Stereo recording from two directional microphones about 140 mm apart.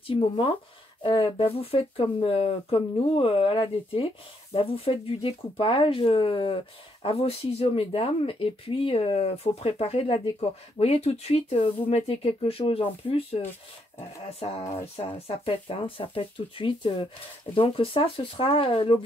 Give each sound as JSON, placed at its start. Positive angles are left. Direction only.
{"t": 0.0, "sound": "speech", "side_deg": 40}